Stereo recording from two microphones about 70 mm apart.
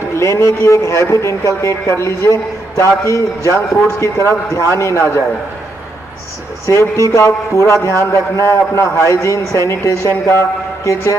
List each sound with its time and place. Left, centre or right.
0.2 s a man's voice: left
6.6 s a man's voice: left